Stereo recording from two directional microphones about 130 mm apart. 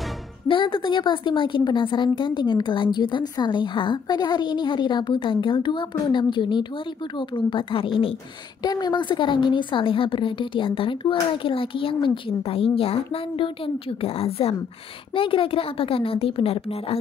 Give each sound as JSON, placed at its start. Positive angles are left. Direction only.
{"t": 0.5, "sound": "a woman's voice", "side_deg": 40}
{"t": 8.6, "sound": "a woman's voice", "side_deg": 30}